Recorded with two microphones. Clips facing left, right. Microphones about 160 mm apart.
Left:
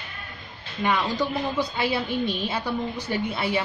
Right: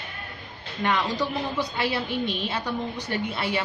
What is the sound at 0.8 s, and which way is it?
A woman's voice, 10° left (ahead or behind).